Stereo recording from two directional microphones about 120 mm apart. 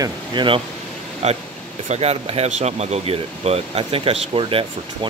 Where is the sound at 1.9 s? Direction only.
60° right (ahead or behind).